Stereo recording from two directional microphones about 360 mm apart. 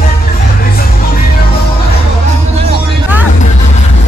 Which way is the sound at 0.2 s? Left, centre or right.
Left.